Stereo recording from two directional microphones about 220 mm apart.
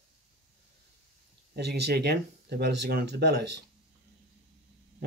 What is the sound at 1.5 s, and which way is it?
Speech, 50° right (ahead or behind).